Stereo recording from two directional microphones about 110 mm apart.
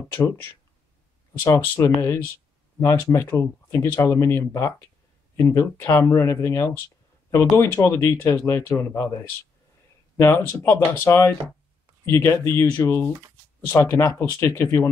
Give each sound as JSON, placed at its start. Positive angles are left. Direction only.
{"t": 0.1, "sound": "speech", "side_deg": 20}